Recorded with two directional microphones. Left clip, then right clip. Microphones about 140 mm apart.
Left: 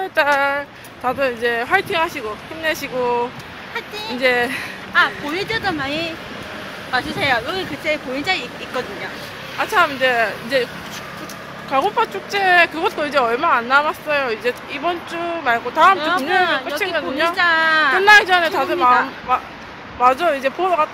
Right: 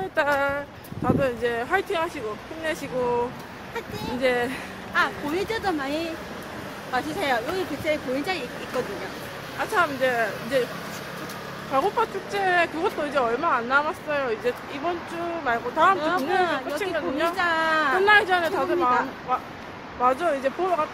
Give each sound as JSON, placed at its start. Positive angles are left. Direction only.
{"t": 0.1, "sound": "speech", "side_deg": 15}
{"t": 4.2, "sound": "speech", "side_deg": 20}
{"t": 4.9, "sound": "speech", "side_deg": -15}
{"t": 9.6, "sound": "speech", "side_deg": 25}
{"t": 11.7, "sound": "speech", "side_deg": 20}
{"t": 17.4, "sound": "speech", "side_deg": -10}
{"t": 18.0, "sound": "speech", "side_deg": 20}
{"t": 20.0, "sound": "speech", "side_deg": 20}